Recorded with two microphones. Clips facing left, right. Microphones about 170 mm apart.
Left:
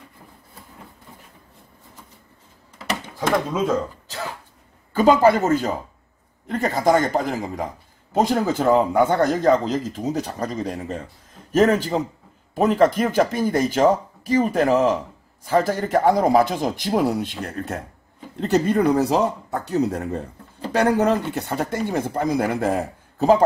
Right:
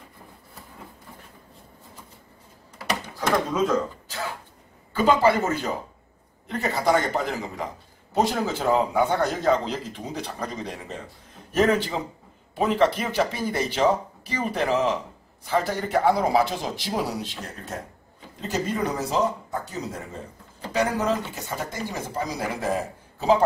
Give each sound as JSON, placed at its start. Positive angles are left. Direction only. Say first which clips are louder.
{"t": 4.9, "sound": "a man's voice", "louder": "left 4 dB", "side_deg": 45}